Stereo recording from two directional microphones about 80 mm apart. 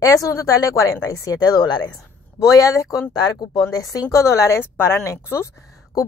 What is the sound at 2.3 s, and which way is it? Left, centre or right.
A woman's voice, left.